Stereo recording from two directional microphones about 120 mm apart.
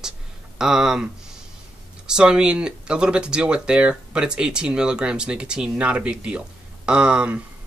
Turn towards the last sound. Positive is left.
turn(degrees=-10)  # may be behind; listen again after turning